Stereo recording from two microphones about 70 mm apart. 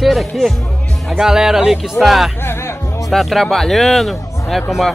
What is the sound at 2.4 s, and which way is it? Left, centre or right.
Music, left.